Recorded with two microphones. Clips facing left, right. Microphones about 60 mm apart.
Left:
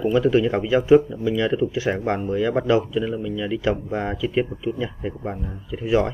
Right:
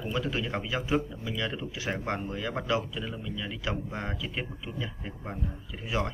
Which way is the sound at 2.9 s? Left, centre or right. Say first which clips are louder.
Left 12 dB; left.